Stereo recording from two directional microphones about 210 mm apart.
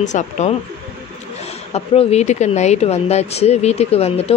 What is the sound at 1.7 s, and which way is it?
Speech, 30° left (ahead or behind).